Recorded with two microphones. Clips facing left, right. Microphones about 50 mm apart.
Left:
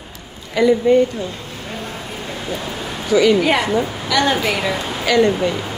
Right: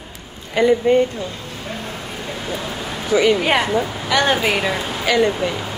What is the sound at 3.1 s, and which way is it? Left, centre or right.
Speech, right.